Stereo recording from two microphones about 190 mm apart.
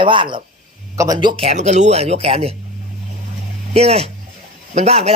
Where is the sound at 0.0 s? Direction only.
25° right (ahead or behind).